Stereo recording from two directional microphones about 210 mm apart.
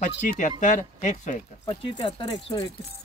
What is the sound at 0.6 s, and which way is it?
Speech, 35° left (ahead or behind).